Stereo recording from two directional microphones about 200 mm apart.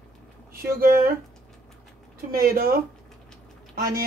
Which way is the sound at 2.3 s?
45° right (ahead or behind).